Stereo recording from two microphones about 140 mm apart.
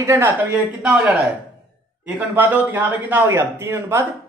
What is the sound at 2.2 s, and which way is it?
Speech, 15° right (ahead or behind).